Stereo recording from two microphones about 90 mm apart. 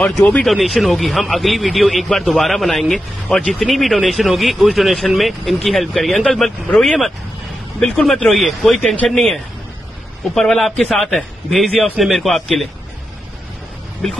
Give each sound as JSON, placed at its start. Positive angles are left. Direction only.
{"t": 0.0, "sound": "a man's voice", "side_deg": 5}